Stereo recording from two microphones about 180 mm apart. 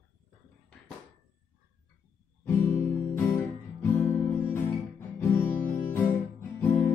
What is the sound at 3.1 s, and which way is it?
Music, 10° left (ahead or behind).